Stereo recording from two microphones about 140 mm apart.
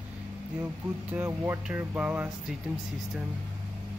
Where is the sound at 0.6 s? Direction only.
15° right (ahead or behind).